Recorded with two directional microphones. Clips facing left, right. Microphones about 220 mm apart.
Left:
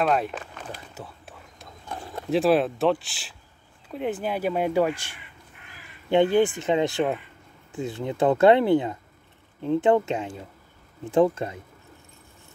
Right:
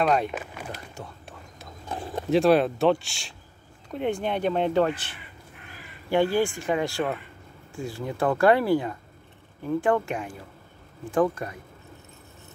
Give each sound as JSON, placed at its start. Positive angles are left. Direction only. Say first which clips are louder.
{"t": 0.0, "sound": "speech", "louder": "even", "side_deg": 0}
{"t": 0.4, "sound": "a sound", "louder": "right 1 dB", "side_deg": -10}
{"t": 1.0, "sound": "speech", "louder": "even", "side_deg": 5}
{"t": 2.2, "sound": "speech", "louder": "right 1 dB", "side_deg": 0}